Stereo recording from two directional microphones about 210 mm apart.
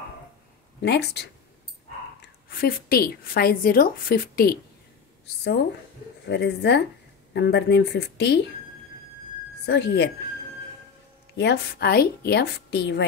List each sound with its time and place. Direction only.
0.7 s speech: 50° left (ahead or behind)
2.5 s a woman's voice: 45° left (ahead or behind)
6.2 s a woman's voice: 55° left (ahead or behind)
9.7 s a woman's voice: 55° left (ahead or behind)
11.3 s a woman's voice: 50° left (ahead or behind)